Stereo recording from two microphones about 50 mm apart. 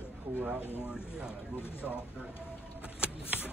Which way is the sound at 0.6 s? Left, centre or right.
Left.